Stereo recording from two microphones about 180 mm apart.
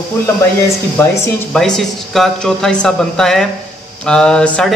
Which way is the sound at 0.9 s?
10° left (ahead or behind).